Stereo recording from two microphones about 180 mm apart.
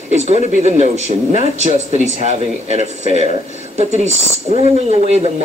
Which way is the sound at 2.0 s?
40° right (ahead or behind).